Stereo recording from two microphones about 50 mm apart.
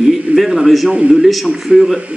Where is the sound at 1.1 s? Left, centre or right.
Centre.